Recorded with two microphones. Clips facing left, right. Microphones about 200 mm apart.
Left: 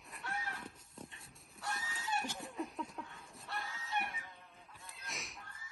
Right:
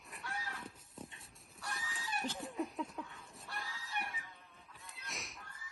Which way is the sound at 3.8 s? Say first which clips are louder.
Left 4 dB; 25° left (ahead or behind).